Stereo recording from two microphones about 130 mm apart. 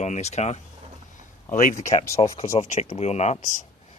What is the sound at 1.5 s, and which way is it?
Speech, 75° left (ahead or behind).